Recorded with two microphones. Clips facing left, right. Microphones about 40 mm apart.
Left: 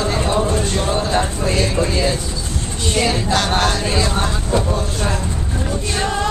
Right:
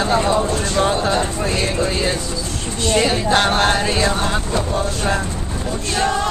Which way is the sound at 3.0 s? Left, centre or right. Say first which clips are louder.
Right 1 dB; right.